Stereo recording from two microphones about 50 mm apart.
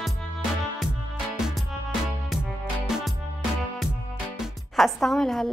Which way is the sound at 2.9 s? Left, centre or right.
Centre.